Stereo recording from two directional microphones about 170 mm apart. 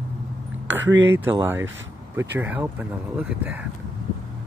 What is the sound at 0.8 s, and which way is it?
Speech, 90° right.